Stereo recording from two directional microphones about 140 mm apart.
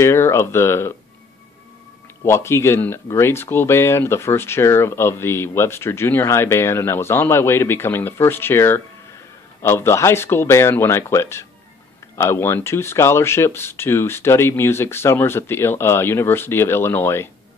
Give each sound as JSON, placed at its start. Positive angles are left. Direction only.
{"t": 0.0, "sound": "speech", "side_deg": 20}
{"t": 2.2, "sound": "speech", "side_deg": 20}